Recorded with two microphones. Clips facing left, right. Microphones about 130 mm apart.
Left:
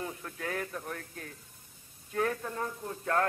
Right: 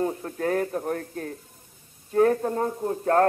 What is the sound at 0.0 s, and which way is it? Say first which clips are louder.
A man's voice: right 12 dB; 40° right (ahead or behind).